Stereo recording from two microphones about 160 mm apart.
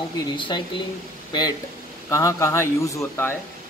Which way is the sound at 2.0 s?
20° left (ahead or behind).